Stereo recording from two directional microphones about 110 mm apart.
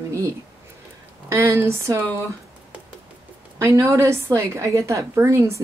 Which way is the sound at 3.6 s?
25° right (ahead or behind).